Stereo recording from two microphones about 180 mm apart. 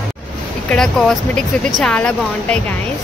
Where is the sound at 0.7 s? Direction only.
5° left (ahead or behind).